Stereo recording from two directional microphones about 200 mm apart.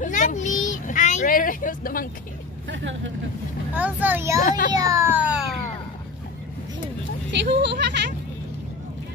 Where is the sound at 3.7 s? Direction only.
10° right (ahead or behind).